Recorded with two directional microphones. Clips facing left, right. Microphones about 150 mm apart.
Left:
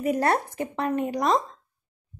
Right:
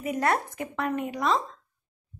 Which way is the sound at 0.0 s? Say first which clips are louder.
Left 3 dB; 35° left (ahead or behind).